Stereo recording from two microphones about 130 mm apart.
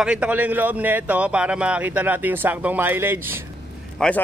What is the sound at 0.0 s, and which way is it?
A man's voice, 10° right (ahead or behind).